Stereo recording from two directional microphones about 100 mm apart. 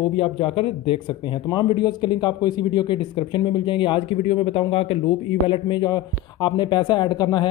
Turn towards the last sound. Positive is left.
turn(degrees=45)  # may be behind; listen again after turning